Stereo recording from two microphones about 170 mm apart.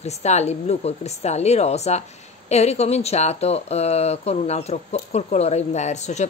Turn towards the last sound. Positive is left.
turn(degrees=40)  # may be behind; listen again after turning